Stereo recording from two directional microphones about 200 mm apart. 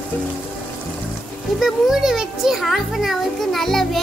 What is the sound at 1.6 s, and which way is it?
A child's voice, centre (ahead or behind).